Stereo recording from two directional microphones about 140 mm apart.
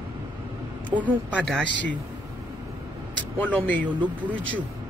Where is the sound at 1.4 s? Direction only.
5° left (ahead or behind).